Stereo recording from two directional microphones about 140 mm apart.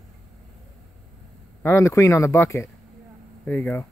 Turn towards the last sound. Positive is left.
turn(degrees=15)  # may be behind; listen again after turning